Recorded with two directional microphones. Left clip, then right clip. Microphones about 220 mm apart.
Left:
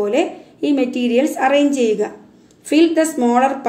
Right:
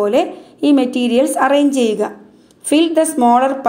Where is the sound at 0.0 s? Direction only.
30° right (ahead or behind).